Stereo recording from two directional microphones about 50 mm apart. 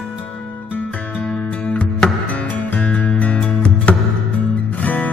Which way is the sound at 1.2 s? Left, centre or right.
Centre.